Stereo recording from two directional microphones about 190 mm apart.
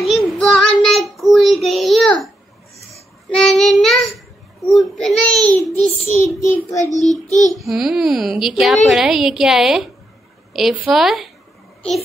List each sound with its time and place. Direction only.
0.1 s child singing: centre (ahead or behind)
3.3 s child singing: centre (ahead or behind)
6.2 s child singing: 15° left (ahead or behind)
7.2 s child singing: 40° left (ahead or behind)
7.5 s a woman's voice: centre (ahead or behind)